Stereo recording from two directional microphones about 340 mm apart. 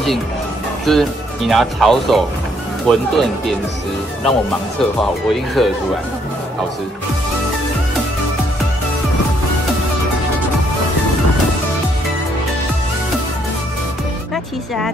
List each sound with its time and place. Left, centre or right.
0.9 s speech: centre
5.3 s speech: centre